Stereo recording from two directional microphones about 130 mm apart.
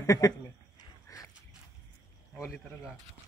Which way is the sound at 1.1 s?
25° left (ahead or behind).